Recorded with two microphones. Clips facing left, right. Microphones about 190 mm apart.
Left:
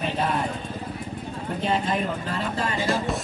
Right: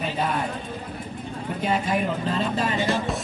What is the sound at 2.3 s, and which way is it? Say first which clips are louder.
Speech: right 3 dB; 20° right (ahead or behind).